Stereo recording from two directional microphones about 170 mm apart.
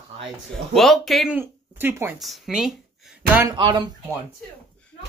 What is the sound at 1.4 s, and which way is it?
Speech, 15° right (ahead or behind).